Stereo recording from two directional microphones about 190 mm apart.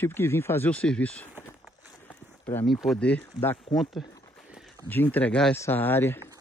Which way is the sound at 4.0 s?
Centre (ahead or behind).